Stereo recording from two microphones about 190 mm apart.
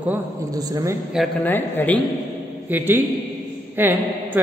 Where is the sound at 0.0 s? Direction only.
15° right (ahead or behind).